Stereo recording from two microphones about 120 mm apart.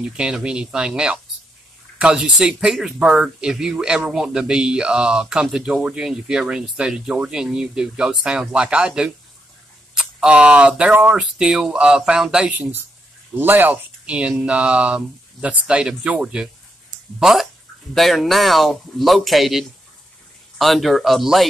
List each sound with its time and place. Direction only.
0.0 s speech: 5° right (ahead or behind)